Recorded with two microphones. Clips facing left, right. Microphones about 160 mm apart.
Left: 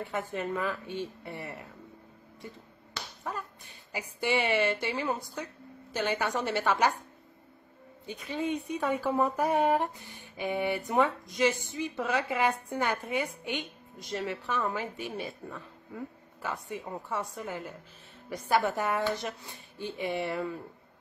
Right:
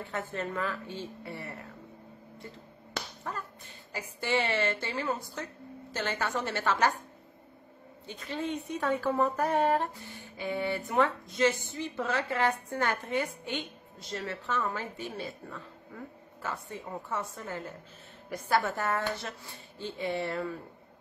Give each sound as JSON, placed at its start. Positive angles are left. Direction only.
{"t": 0.0, "sound": "a woman's voice", "side_deg": 15}
{"t": 3.3, "sound": "speech", "side_deg": 15}
{"t": 8.1, "sound": "a woman's voice", "side_deg": 15}